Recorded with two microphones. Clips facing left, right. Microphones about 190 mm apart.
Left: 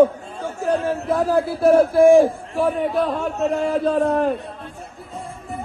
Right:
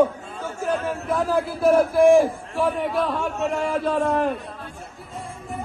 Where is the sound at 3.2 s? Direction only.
35° left (ahead or behind).